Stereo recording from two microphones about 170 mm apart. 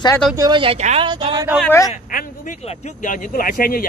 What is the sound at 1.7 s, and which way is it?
Speech, 20° left (ahead or behind).